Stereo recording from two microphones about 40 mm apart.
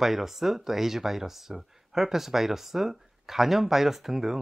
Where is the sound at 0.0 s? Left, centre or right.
Centre.